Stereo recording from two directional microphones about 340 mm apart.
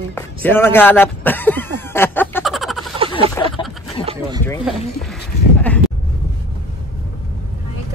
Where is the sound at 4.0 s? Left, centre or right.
Centre.